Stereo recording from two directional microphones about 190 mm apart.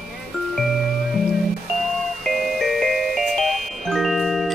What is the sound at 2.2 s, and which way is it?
Music, centre (ahead or behind).